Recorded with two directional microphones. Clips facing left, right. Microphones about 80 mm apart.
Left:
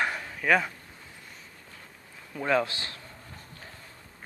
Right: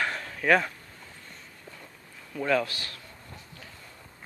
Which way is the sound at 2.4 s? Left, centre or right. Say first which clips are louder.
Even; left.